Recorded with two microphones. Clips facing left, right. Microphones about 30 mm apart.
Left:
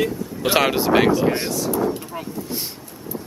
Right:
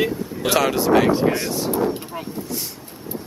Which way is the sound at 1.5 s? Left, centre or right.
Right.